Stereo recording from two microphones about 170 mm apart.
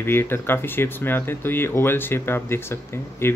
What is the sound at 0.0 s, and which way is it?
Speech, 15° left (ahead or behind).